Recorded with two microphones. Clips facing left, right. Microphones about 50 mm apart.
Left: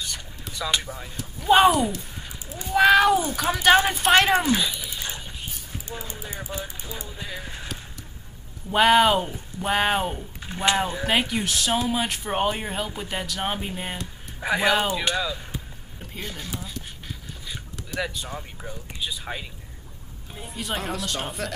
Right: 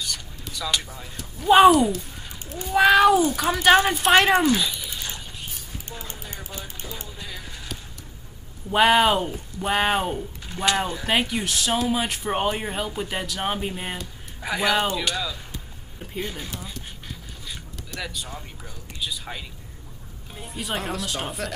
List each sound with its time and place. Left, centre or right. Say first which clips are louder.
0.1 s a sound: right 1 dB; left
0.8 s speech: left 3 dB; centre
1.1 s speech: right 2 dB; centre
6.2 s speech: left 4 dB; centre
8.6 s speech: even; centre
10.4 s speech: left 1 dB; left
11.1 s speech: right 1 dB; centre
14.4 s speech: left 1 dB; left
16.1 s speech: right 4 dB; centre
17.5 s vehicle: left 2 dB; centre
18.2 s speech: left 3 dB; centre
20.3 s speech: right 1 dB; centre